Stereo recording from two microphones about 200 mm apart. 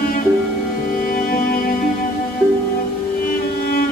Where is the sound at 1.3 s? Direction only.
45° left (ahead or behind).